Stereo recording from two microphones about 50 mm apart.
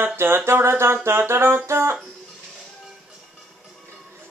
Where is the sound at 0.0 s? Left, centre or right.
Right.